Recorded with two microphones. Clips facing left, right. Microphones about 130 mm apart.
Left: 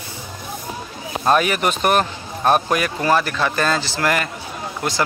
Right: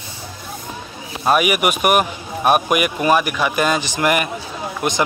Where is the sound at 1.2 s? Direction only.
10° right (ahead or behind).